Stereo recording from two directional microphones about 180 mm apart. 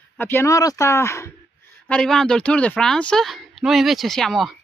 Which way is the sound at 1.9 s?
5° left (ahead or behind).